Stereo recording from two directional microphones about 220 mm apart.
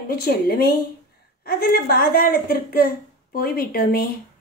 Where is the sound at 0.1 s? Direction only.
45° left (ahead or behind).